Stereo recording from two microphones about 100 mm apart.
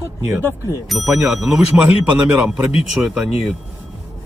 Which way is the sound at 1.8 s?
15° right (ahead or behind).